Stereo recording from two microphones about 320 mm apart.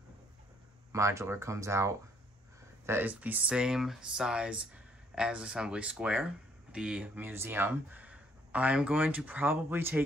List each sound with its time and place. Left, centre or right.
0.9 s speech: centre